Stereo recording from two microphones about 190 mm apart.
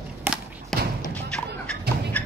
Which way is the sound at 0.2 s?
5° right (ahead or behind).